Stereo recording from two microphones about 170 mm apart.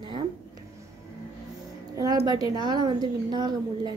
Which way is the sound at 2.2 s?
25° right (ahead or behind).